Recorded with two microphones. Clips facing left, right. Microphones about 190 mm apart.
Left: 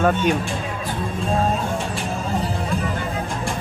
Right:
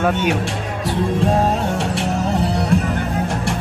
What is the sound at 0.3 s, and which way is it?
Music, 75° right (ahead or behind).